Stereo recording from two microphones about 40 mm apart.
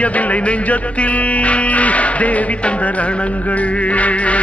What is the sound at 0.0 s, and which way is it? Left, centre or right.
Music, left.